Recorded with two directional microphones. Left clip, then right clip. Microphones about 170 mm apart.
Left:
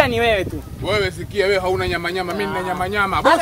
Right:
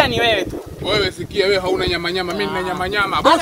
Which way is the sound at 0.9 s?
10° left (ahead or behind).